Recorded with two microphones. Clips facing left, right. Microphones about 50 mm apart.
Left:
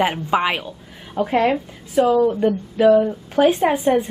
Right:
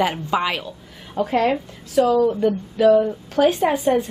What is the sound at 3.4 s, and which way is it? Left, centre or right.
Speech, centre.